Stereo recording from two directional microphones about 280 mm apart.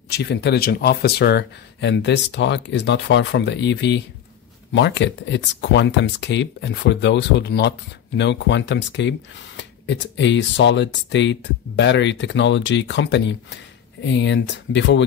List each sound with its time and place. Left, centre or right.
0.1 s speech: left